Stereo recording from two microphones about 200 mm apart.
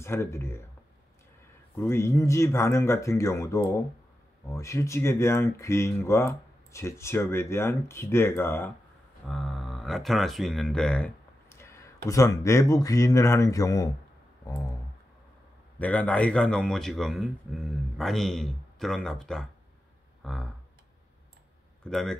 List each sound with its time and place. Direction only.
0.0 s speech: 15° left (ahead or behind)
1.8 s speech: 10° left (ahead or behind)
9.3 s speech: centre (ahead or behind); by 13.8 s 15° left (ahead or behind)
14.4 s clicking: 15° left (ahead or behind)
15.8 s speech: 5° left (ahead or behind)
21.8 s speech: 5° left (ahead or behind)